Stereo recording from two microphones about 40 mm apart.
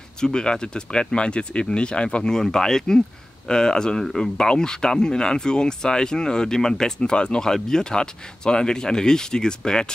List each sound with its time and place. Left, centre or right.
0.2 s speech: centre